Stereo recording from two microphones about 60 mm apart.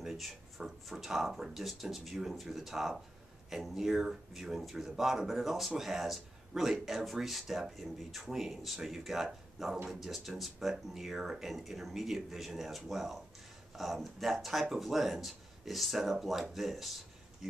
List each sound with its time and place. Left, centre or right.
0.0 s speech: centre